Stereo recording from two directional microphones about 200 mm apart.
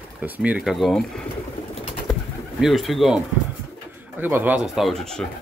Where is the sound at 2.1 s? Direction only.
Centre (ahead or behind).